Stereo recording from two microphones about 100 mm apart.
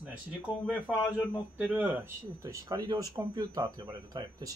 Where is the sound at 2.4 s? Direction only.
35° right (ahead or behind).